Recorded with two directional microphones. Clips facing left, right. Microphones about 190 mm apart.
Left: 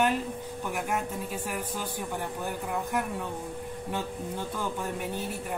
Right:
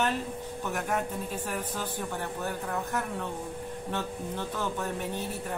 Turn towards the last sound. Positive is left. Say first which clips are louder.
# even
turn(degrees=10)  # may be behind; listen again after turning